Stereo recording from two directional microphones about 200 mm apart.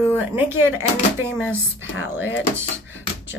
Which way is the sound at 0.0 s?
10° right (ahead or behind).